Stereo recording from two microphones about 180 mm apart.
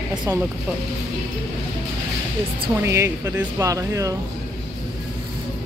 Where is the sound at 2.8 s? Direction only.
15° right (ahead or behind).